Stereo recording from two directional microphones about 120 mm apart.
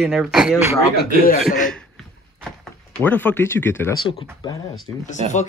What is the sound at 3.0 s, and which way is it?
Speech, 15° left (ahead or behind).